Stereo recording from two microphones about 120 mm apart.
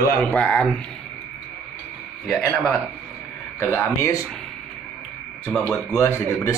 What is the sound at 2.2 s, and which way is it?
Speech, 10° left (ahead or behind).